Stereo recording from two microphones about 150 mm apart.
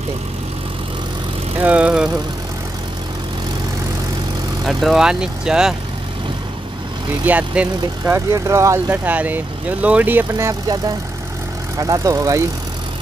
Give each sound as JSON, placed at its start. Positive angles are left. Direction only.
{"t": 1.6, "sound": "speech", "side_deg": -10}
{"t": 4.6, "sound": "speech", "side_deg": 0}
{"t": 7.2, "sound": "speech", "side_deg": -10}
{"t": 11.8, "sound": "speech", "side_deg": -20}